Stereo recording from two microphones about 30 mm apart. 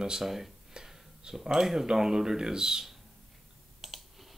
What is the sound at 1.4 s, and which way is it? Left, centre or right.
Speech, centre.